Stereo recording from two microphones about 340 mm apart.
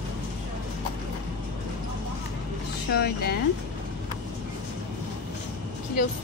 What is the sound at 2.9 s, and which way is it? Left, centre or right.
Speech, left.